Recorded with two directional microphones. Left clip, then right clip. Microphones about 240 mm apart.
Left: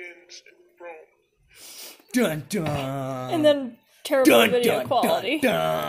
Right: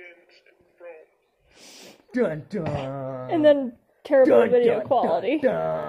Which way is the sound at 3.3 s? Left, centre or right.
Right.